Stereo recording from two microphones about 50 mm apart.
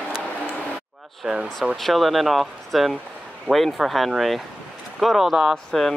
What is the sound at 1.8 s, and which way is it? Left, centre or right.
Speech, centre.